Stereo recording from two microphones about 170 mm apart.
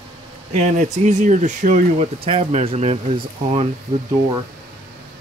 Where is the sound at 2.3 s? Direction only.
35° right (ahead or behind).